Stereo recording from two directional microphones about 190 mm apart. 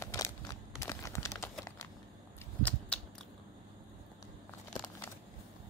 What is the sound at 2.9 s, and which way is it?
Biting, 5° left (ahead or behind).